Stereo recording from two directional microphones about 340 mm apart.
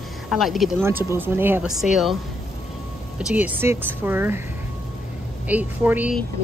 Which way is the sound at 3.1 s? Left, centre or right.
Centre.